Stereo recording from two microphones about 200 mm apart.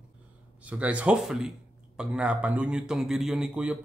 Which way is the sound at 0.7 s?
5° right (ahead or behind).